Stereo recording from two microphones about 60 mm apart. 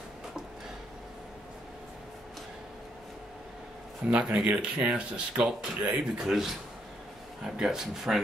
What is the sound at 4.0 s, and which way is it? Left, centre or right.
Speech, centre.